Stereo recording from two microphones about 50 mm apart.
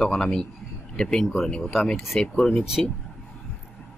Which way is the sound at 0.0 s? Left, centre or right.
Centre.